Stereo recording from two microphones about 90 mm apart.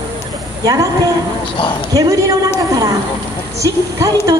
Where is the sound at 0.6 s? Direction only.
40° right (ahead or behind).